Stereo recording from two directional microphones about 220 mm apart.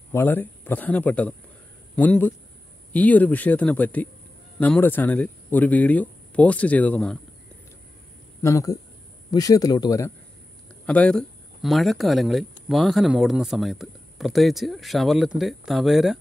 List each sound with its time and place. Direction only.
0.1 s speech: 10° left (ahead or behind)
8.4 s speech: 15° left (ahead or behind)